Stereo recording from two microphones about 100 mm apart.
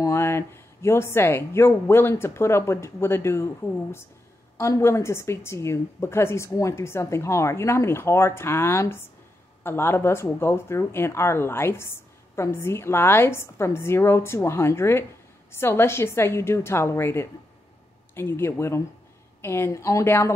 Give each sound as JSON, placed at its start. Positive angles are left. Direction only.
{"t": 0.0, "sound": "a woman's voice", "side_deg": 25}